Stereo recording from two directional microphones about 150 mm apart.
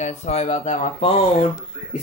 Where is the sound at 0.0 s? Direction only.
50° left (ahead or behind).